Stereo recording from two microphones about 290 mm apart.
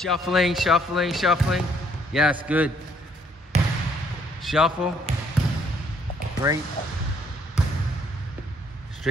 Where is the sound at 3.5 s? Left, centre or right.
Right.